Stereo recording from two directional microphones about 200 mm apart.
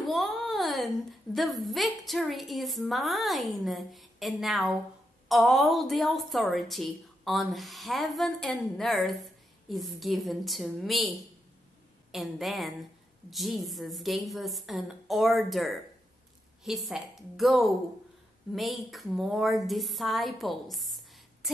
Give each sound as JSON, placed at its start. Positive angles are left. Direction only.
{"t": 0.1, "sound": "a woman's voice", "side_deg": 0}